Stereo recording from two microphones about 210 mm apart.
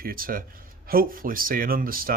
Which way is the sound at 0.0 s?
45° right (ahead or behind).